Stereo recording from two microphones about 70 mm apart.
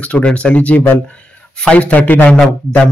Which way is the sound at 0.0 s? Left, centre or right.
Centre.